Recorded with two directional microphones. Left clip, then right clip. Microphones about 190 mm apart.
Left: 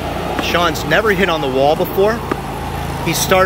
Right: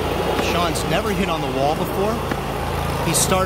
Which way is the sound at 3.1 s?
5° right (ahead or behind).